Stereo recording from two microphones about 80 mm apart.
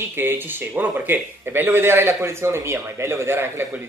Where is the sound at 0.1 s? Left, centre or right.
Right.